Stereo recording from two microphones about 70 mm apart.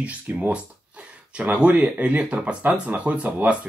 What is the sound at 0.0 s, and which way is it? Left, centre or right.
Speech, right.